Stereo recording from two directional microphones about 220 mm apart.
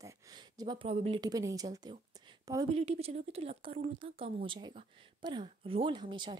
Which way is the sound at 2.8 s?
30° right (ahead or behind).